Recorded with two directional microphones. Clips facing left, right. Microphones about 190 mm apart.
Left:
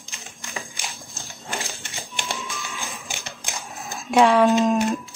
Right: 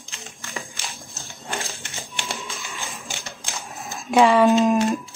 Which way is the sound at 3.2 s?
15° left (ahead or behind).